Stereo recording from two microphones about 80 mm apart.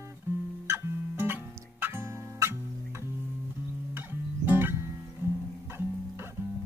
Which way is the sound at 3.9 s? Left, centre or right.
Right.